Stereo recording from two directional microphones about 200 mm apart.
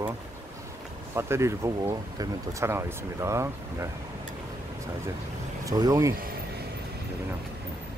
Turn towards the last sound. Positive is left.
turn(degrees=-15)  # may be behind; listen again after turning